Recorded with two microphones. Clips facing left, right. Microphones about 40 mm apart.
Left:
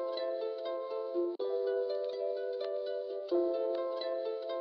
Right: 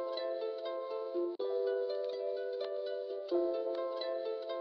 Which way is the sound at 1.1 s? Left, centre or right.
Centre.